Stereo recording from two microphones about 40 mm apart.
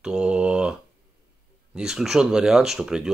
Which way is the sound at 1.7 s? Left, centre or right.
Centre.